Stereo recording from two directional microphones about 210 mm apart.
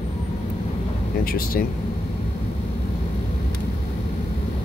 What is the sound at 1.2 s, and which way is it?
Speech, 45° left (ahead or behind).